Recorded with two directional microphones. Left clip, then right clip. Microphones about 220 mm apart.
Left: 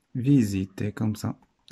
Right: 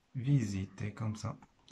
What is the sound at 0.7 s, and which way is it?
Speech, 45° left (ahead or behind).